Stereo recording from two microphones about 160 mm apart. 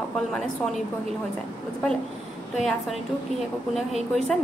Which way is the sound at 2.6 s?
Centre (ahead or behind).